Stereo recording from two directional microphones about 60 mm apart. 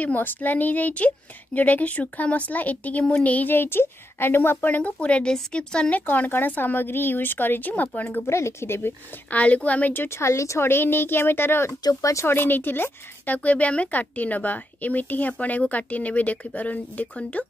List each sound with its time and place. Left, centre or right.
0.0 s a woman's voice: left
8.2 s speech: left
9.3 s speech: left
10.0 s a woman's voice: left
11.9 s speech: left
12.3 s speech: left